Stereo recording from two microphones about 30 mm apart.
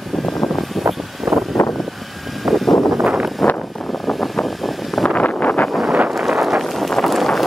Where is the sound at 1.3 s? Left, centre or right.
Centre.